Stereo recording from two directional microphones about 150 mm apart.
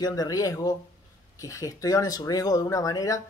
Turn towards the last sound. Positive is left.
turn(degrees=25)  # may be behind; listen again after turning